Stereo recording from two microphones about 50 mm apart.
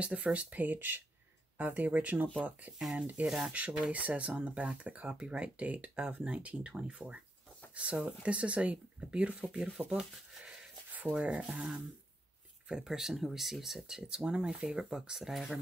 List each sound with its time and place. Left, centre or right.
0.0 s speech: right
2.8 s speech: centre
3.4 s speech: right
9.5 s speech: centre
14.0 s speech: centre